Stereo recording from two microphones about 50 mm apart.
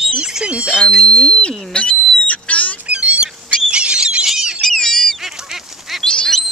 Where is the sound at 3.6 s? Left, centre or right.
Centre.